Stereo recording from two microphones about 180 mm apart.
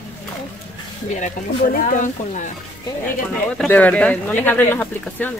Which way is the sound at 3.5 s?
10° left (ahead or behind).